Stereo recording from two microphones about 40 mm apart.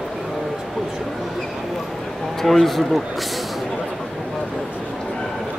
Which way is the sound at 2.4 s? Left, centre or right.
Centre.